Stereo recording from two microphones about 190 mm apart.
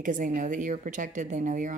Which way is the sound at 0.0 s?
45° right (ahead or behind).